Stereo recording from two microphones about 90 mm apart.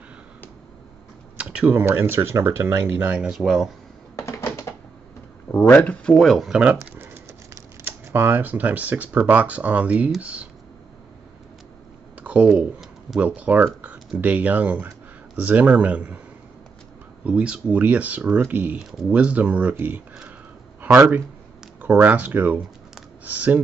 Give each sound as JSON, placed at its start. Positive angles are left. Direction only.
{"t": 1.4, "sound": "speech", "side_deg": -15}
{"t": 3.3, "sound": "speech", "side_deg": -5}
{"t": 4.2, "sound": "typing", "side_deg": 35}
{"t": 5.5, "sound": "speech", "side_deg": 20}
{"t": 6.1, "sound": "speech", "side_deg": 0}
{"t": 7.8, "sound": "speech", "side_deg": -25}
{"t": 12.2, "sound": "a sound", "side_deg": -15}
{"t": 13.2, "sound": "speech", "side_deg": -15}
{"t": 17.2, "sound": "speech", "side_deg": -15}
{"t": 18.8, "sound": "speech", "side_deg": 0}
{"t": 19.0, "sound": "speech", "side_deg": -15}
{"t": 21.8, "sound": "speech", "side_deg": -20}